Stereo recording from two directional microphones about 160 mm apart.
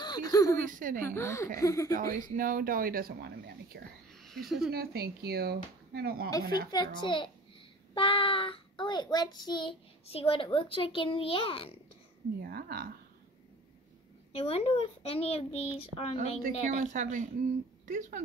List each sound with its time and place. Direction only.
0.0 s a sound: 25° left (ahead or behind)
0.7 s speech: 55° right (ahead or behind)
1.0 s a woman's voice: 15° left (ahead or behind)
2.0 s speech: 55° right (ahead or behind); by 3.8 s 75° right (ahead or behind)
4.2 s speech: centre (ahead or behind)
4.6 s speech: 75° right (ahead or behind)
6.7 s a child's voice: 30° left (ahead or behind)
12.4 s speech: 70° right (ahead or behind)
14.3 s a child's voice: 40° left (ahead or behind)
16.2 s a woman's voice: 50° right (ahead or behind)